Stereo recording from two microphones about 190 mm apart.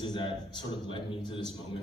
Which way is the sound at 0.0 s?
25° left (ahead or behind).